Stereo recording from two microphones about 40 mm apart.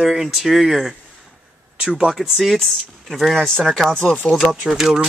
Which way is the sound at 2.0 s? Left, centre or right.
Centre.